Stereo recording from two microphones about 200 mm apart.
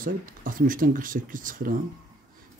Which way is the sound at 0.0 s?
45° right (ahead or behind).